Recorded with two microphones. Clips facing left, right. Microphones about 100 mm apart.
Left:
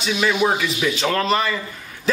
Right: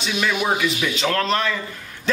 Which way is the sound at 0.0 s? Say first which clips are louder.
Left 3 dB; centre (ahead or behind).